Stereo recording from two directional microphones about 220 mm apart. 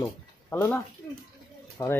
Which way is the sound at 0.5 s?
10° left (ahead or behind).